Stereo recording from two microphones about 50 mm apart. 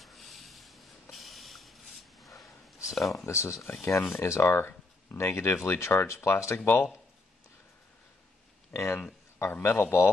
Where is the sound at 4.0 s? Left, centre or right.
Left.